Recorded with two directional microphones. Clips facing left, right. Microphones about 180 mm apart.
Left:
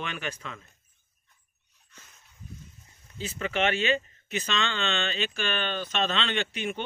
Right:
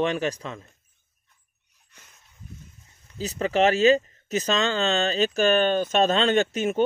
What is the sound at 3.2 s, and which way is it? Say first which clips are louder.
Speech: right 7 dB; 35° right (ahead or behind).